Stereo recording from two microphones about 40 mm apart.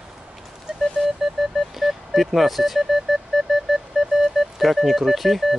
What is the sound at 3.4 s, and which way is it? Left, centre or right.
Music, centre.